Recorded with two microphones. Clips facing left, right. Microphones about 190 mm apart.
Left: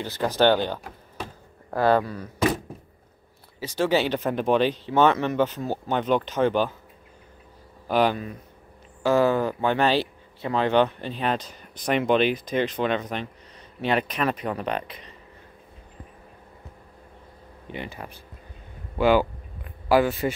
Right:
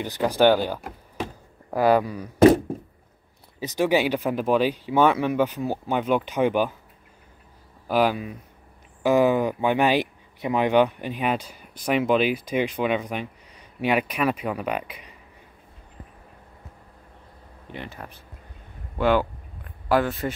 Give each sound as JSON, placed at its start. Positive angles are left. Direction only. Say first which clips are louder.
{"t": 0.0, "sound": "speech", "louder": "right 2 dB", "side_deg": -15}
{"t": 2.3, "sound": "thunk", "louder": "right 10 dB", "side_deg": -55}
{"t": 3.5, "sound": "speech", "louder": "right 1 dB", "side_deg": -15}
{"t": 7.9, "sound": "speech", "louder": "even", "side_deg": -5}
{"t": 17.6, "sound": "speech", "louder": "left 2 dB", "side_deg": 0}
{"t": 18.9, "sound": "a sound", "louder": "left 1 dB", "side_deg": 5}